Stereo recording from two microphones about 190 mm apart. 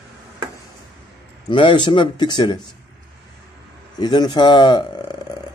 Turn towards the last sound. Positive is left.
turn(degrees=25)  # may be behind; listen again after turning